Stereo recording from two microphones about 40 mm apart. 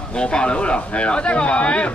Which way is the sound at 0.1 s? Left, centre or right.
Left.